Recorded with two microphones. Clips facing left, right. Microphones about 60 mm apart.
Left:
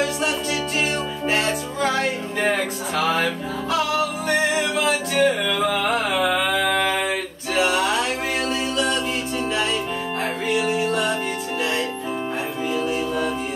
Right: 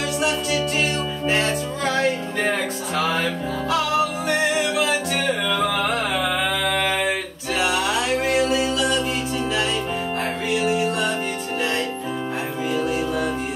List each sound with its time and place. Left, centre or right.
0.2 s music: centre
10.6 s music: centre
12.6 s music: centre